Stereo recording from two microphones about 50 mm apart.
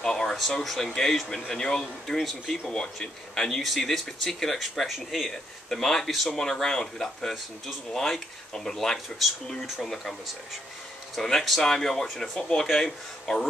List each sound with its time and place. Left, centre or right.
0.0 s a sound: centre
0.7 s speech: centre
11.1 s speech: centre